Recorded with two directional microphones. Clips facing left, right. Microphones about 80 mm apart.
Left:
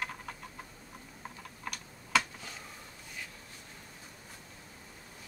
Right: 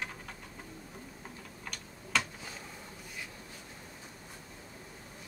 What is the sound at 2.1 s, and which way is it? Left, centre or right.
Finger snapping, centre.